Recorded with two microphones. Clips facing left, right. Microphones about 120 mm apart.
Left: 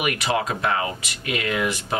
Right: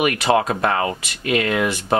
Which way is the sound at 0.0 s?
45° right (ahead or behind).